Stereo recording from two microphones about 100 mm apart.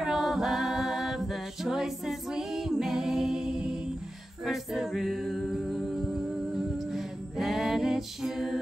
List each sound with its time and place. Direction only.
0.0 s a capella: 5° right (ahead or behind)
4.5 s music: 5° right (ahead or behind)